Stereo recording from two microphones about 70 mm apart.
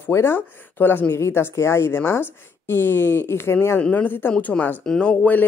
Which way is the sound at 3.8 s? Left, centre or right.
Left.